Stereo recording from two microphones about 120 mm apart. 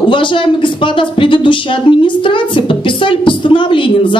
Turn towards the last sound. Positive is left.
turn(degrees=45)  # may be behind; listen again after turning